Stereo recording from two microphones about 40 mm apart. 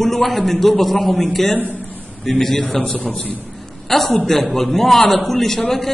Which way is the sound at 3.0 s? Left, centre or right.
Left.